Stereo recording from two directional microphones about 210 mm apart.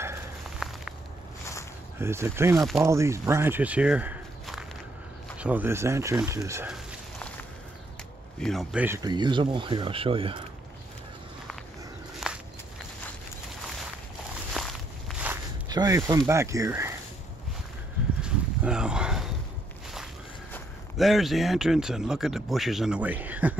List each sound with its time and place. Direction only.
0.6 s a sound: centre (ahead or behind)
2.0 s speech: 10° right (ahead or behind)
6.7 s a sound: centre (ahead or behind)
8.4 s a man's voice: centre (ahead or behind)
8.8 s speech: 15° right (ahead or behind)
12.2 s walk: centre (ahead or behind)
14.5 s walk: centre (ahead or behind)
15.7 s speech: 15° right (ahead or behind)
18.2 s a sound: 5° right (ahead or behind)
20.5 s a man's voice: centre (ahead or behind)